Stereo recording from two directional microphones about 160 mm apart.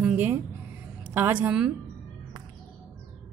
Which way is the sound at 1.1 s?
10° right (ahead or behind).